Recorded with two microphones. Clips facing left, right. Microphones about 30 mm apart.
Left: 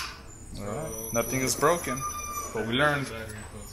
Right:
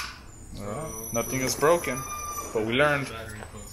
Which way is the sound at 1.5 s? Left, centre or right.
Centre.